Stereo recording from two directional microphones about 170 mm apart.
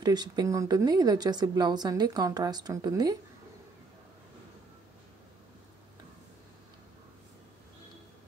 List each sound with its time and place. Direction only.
0.0 s speech: 25° right (ahead or behind)